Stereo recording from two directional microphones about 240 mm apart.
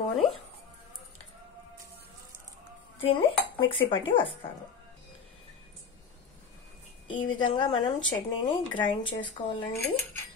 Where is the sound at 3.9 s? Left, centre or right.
Left.